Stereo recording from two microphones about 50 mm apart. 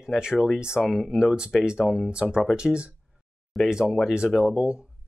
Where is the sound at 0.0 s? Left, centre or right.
Centre.